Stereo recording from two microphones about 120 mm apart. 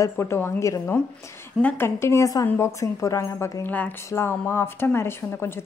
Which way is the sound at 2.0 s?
25° left (ahead or behind).